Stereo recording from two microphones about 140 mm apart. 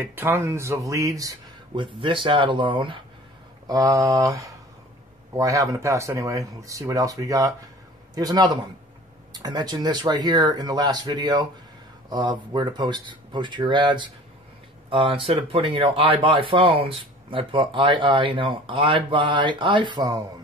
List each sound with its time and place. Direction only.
0.0 s speech: 15° right (ahead or behind)
1.8 s speech: 35° right (ahead or behind)
3.6 s speech: 25° right (ahead or behind)